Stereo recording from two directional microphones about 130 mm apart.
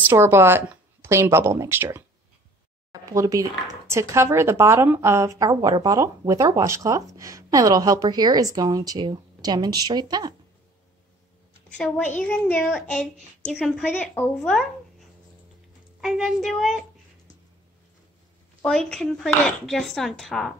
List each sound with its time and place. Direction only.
0.0 s speech: 15° right (ahead or behind); by 10.3 s 30° right (ahead or behind)
11.7 s a child's voice: 10° left (ahead or behind)
18.6 s speech: 5° left (ahead or behind)